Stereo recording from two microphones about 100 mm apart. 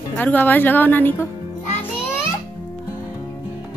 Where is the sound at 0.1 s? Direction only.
15° left (ahead or behind).